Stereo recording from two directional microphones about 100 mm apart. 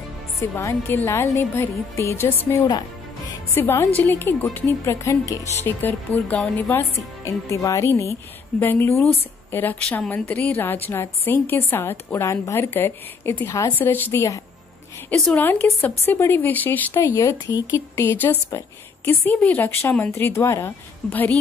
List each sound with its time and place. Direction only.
0.4 s a woman's voice: 30° left (ahead or behind)
6.3 s a woman's voice: 5° left (ahead or behind)
6.7 s a woman's voice: 30° left (ahead or behind)
15.0 s a woman's voice: 5° left (ahead or behind)
15.3 s a woman's voice: 15° left (ahead or behind); by 17.6 s 35° left (ahead or behind)
17.7 s a woman's voice: 25° left (ahead or behind)
21.1 s a woman's voice: 15° left (ahead or behind)